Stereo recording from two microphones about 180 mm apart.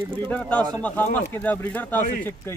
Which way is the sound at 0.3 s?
10° left (ahead or behind).